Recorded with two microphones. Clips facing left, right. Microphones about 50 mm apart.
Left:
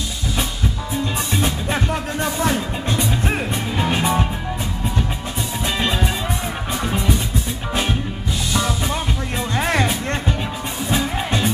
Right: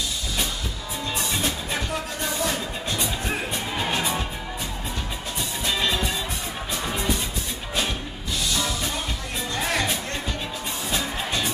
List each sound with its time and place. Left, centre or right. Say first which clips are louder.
2.4 s music: left 6 dB; left
3.7 s music: left 5 dB; centre
4.0 s music: left 7 dB; left
5.8 s music: left 3 dB; left
8.5 s music: left 6 dB; left
9.6 s music: left 6 dB; left